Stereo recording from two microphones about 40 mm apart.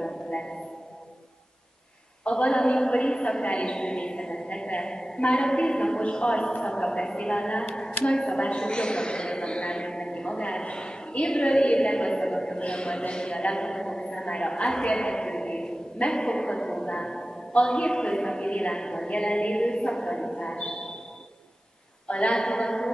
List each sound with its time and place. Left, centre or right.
0.0 s a sound: left
2.2 s a woman's voice: left
22.0 s a woman's voice: left